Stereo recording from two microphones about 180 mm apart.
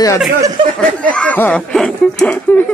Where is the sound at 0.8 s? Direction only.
5° left (ahead or behind).